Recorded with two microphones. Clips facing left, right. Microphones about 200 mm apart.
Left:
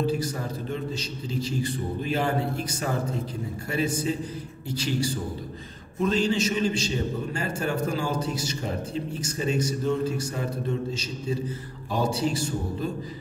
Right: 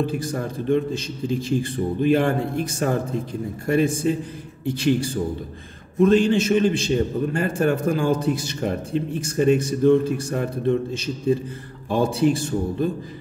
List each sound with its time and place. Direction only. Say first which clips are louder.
0.0 s a man's voice: right 2 dB; 55° right (ahead or behind)